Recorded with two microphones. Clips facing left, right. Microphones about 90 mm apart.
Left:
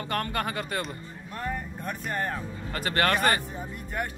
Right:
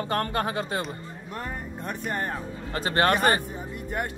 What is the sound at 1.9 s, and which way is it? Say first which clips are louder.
Speech: right 1 dB; 25° right (ahead or behind).